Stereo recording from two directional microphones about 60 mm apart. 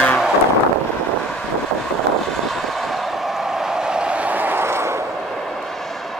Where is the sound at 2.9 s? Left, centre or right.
Centre; by 5.0 s right.